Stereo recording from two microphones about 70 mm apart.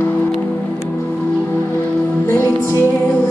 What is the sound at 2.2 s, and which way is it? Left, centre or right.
Music, left.